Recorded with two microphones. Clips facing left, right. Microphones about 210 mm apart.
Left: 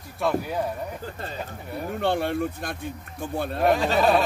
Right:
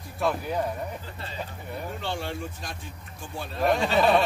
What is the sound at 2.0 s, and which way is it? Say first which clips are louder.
A man's voice: left 11 dB; 55° left (ahead or behind).